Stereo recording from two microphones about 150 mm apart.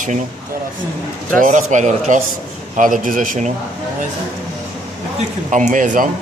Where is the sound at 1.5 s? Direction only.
55° right (ahead or behind).